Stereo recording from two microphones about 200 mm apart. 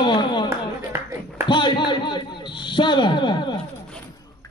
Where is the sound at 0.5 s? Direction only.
15° right (ahead or behind).